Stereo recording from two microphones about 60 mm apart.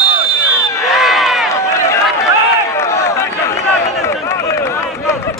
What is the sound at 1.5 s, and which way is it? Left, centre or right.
Run, left.